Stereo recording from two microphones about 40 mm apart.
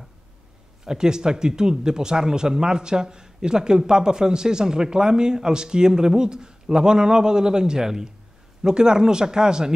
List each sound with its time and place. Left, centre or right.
0.8 s speech: centre